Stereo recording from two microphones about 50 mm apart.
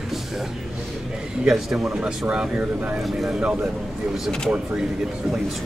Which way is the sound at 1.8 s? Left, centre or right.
Centre.